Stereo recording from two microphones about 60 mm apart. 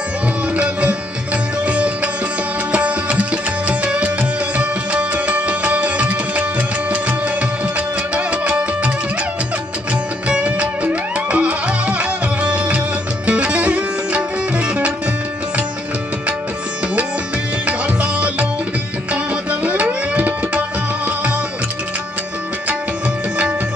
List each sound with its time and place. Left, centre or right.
0.6 s sitar: centre
2.7 s music: right
10.2 s music: right
17.6 s music: centre
19.1 s tabla: right